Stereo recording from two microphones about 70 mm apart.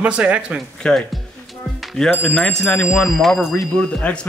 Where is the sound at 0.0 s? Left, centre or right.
Centre.